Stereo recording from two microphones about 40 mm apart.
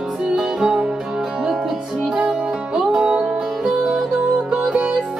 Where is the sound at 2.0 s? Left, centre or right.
Centre.